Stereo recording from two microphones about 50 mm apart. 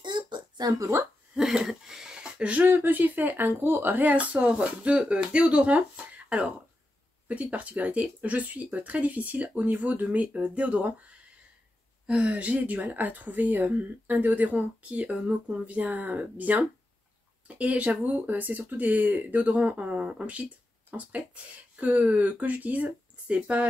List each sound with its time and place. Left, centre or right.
1.4 s a sound: centre
2.6 s speech: right
12.1 s speech: right